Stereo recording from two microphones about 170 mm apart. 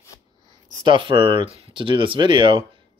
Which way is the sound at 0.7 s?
25° right (ahead or behind).